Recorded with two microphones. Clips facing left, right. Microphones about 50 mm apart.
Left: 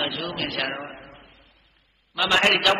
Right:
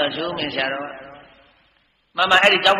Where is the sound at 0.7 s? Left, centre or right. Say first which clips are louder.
Right 6 dB; right.